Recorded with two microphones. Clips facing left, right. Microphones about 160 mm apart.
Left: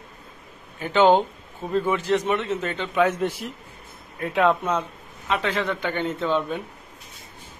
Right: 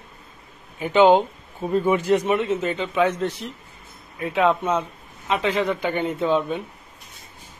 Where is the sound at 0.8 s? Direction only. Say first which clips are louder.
Right 2 dB; 5° right (ahead or behind).